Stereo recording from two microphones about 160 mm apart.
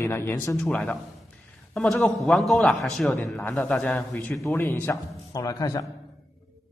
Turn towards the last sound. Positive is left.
turn(degrees=20)  # may be behind; listen again after turning